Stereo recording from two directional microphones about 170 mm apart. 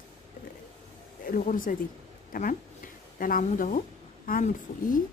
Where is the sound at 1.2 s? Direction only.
55° left (ahead or behind).